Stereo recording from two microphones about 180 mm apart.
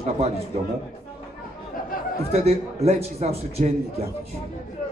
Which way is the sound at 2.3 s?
35° right (ahead or behind).